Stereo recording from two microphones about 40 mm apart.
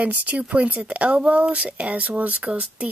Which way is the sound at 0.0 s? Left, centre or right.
Right.